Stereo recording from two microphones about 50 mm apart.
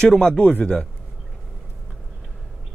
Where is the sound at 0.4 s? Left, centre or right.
Left.